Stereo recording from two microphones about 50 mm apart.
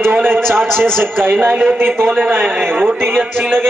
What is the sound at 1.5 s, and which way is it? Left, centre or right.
Speech, right.